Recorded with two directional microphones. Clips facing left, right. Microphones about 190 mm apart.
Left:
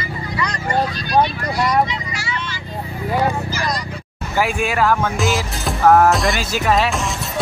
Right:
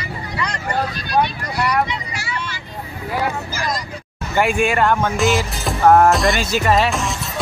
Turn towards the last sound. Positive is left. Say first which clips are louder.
# right 1 dB
turn(degrees=0)  # may be behind; listen again after turning